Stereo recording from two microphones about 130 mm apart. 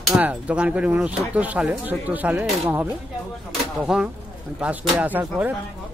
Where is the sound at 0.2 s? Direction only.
10° right (ahead or behind).